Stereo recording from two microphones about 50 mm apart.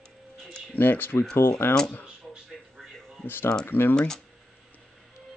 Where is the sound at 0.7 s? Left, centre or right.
Left.